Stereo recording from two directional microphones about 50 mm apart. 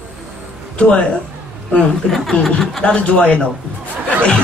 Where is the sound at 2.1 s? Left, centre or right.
Centre.